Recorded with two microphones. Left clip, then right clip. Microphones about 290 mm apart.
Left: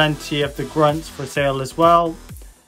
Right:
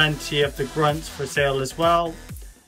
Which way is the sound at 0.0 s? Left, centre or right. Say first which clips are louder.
Left 1 dB; centre.